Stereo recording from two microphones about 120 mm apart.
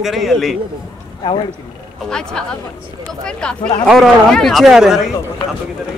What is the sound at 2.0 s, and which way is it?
A man's voice, 5° left (ahead or behind).